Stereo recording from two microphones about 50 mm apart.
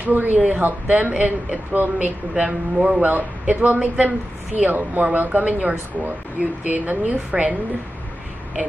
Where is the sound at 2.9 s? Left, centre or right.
Right.